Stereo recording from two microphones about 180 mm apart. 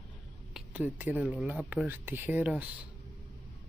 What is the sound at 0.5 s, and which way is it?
Speech, 5° right (ahead or behind).